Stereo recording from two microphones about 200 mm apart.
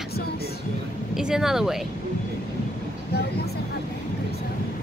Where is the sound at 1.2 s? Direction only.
5° right (ahead or behind).